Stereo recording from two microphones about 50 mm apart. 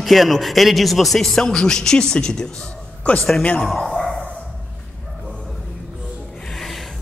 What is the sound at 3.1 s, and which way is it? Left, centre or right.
Speech, left.